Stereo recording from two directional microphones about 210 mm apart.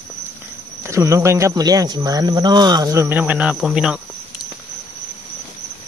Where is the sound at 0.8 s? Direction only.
15° right (ahead or behind).